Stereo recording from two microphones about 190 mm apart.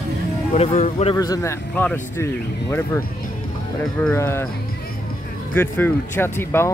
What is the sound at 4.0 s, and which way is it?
Speech, 10° left (ahead or behind).